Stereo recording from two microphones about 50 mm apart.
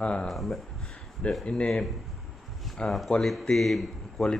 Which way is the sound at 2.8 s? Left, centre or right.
Centre.